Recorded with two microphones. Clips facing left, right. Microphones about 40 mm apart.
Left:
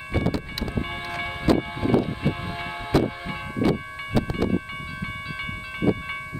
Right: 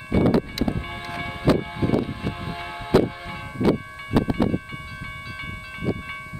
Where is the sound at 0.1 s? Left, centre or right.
Centre.